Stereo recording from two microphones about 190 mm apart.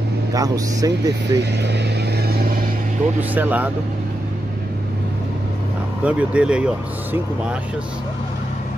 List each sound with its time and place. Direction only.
0.3 s speech: 20° right (ahead or behind)
1.4 s speech: 60° right (ahead or behind)
2.2 s vehicle: 55° right (ahead or behind)
3.2 s speech: 10° right (ahead or behind)
6.0 s speech: 5° right (ahead or behind)